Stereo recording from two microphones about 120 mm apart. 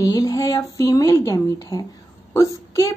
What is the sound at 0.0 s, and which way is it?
A woman's voice, 30° left (ahead or behind).